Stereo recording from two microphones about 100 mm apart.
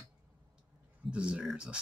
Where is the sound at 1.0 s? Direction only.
10° right (ahead or behind).